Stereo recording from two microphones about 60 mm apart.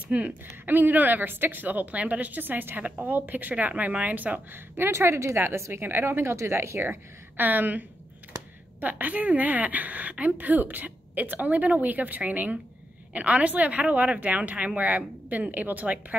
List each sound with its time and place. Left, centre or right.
0.1 s a woman's voice: right
8.8 s a woman's voice: right